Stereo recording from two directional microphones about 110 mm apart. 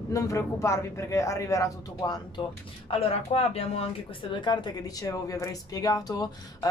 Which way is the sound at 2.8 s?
60° left (ahead or behind).